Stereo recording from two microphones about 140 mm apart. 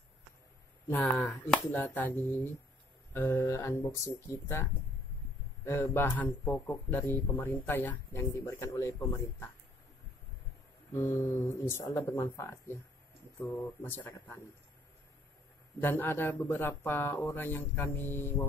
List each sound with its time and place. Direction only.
0.8 s speech: 15° left (ahead or behind)
5.7 s speech: 15° left (ahead or behind)
10.9 s speech: 20° left (ahead or behind)
15.8 s speech: 15° left (ahead or behind)